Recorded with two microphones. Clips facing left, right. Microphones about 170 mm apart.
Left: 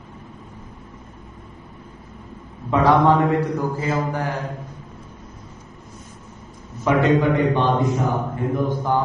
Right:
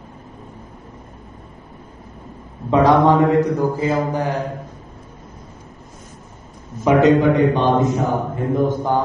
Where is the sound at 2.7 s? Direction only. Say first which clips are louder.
Right 3 dB; 15° right (ahead or behind).